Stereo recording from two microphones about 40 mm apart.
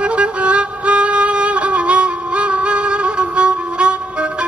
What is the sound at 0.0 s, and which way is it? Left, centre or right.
Music, right.